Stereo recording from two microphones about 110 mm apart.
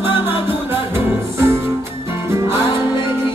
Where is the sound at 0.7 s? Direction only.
20° right (ahead or behind).